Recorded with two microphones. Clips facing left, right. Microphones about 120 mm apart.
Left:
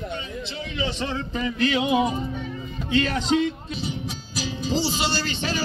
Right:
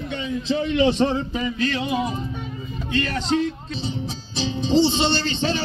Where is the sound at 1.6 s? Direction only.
15° left (ahead or behind).